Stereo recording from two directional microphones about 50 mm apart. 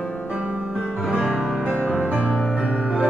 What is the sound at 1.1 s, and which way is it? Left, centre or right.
Music, right.